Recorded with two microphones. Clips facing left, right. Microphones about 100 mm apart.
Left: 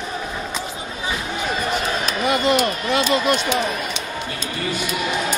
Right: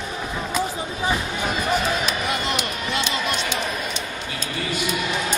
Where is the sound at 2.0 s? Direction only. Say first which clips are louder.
Left 6 dB; 40° left (ahead or behind).